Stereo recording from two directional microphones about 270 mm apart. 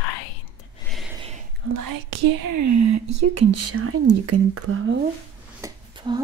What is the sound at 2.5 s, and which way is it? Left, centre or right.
Speech, right.